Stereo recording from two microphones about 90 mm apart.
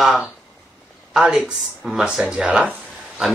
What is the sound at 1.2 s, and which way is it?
Speech, 15° right (ahead or behind).